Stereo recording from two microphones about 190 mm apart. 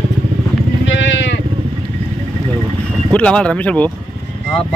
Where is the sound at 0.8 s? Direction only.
75° left (ahead or behind).